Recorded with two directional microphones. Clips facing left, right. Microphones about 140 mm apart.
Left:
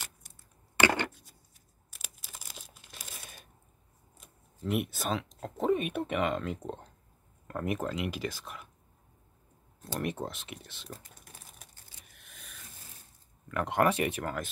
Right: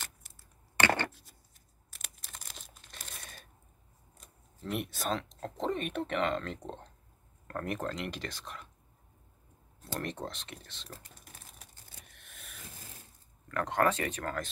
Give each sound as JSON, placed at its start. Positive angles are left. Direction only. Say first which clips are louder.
{"t": 0.8, "sound": "a sound", "louder": "left 3 dB", "side_deg": 15}
{"t": 1.9, "sound": "crumpling", "louder": "even", "side_deg": 5}
{"t": 4.2, "sound": "speech", "louder": "left 4 dB", "side_deg": 5}
{"t": 9.9, "sound": "speech", "louder": "left 3 dB", "side_deg": 10}
{"t": 12.1, "sound": "a sound", "louder": "even", "side_deg": 0}
{"t": 13.5, "sound": "speech", "louder": "left 2 dB", "side_deg": 10}